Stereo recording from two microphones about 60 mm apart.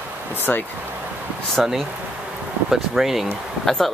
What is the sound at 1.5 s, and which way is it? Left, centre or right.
Speech, centre.